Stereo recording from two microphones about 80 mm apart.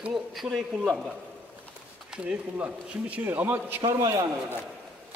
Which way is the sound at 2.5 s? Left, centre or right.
Centre.